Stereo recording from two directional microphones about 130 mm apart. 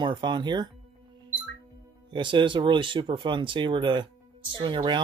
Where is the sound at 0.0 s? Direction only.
35° right (ahead or behind).